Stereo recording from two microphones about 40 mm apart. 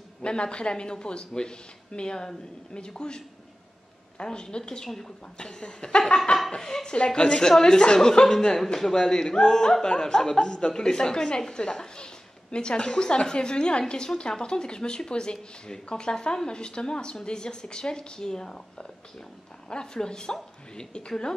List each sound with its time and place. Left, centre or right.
0.2 s a woman's voice: left
4.8 s speech: centre
5.4 s a woman's voice: left